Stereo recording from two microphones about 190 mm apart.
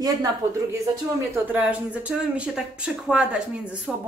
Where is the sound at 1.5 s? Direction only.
5° right (ahead or behind).